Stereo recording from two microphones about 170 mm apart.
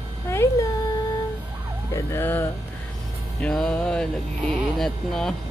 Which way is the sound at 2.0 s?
15° left (ahead or behind).